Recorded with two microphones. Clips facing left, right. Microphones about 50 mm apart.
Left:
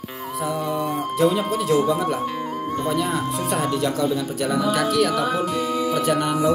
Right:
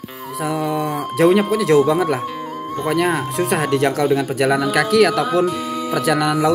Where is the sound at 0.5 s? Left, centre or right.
Right.